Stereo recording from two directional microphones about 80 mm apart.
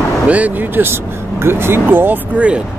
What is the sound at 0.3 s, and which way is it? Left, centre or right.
Speech, right.